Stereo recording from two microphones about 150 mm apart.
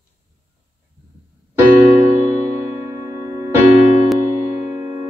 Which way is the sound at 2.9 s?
20° right (ahead or behind).